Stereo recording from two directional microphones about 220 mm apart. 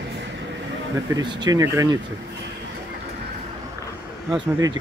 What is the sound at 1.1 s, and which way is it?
Speech, 20° right (ahead or behind).